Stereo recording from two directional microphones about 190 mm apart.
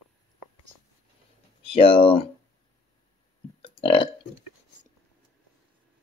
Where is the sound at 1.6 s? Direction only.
30° left (ahead or behind).